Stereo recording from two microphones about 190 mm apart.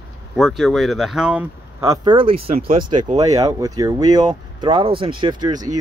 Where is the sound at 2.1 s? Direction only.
30° right (ahead or behind).